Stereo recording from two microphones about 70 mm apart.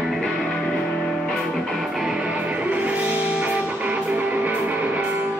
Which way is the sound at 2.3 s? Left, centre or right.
Right.